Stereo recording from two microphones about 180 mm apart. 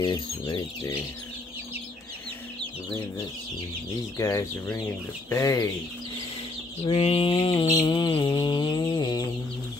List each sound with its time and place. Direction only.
0.0 s mantra: 20° left (ahead or behind)
4.2 s speech: 15° left (ahead or behind)
6.8 s mantra: 35° left (ahead or behind)